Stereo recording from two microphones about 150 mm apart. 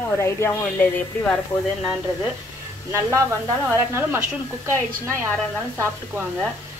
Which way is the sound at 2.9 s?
15° right (ahead or behind).